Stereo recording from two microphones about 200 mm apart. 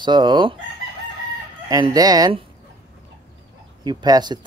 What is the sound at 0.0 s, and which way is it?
Speech, 20° right (ahead or behind).